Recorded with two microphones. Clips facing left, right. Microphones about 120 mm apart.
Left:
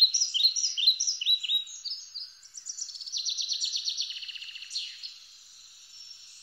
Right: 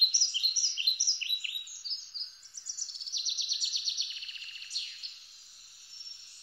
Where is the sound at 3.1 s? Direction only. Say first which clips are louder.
Left 2 dB; 15° left (ahead or behind).